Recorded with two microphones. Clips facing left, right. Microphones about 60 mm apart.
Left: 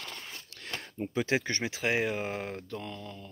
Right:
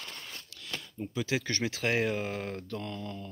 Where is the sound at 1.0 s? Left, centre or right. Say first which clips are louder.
Left 3 dB; left.